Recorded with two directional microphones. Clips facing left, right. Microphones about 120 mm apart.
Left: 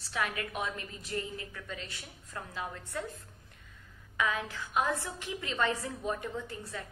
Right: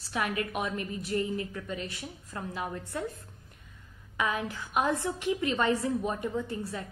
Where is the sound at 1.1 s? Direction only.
30° right (ahead or behind).